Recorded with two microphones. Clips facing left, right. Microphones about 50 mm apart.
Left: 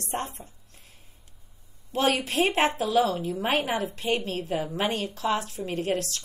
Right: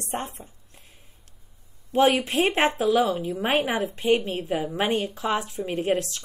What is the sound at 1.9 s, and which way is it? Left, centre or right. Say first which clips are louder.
A woman's voice: right 4 dB; right.